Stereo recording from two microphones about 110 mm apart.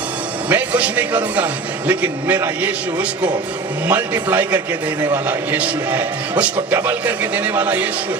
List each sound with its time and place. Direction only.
0.5 s a man's voice: 15° right (ahead or behind)
3.8 s a man's voice: 20° right (ahead or behind)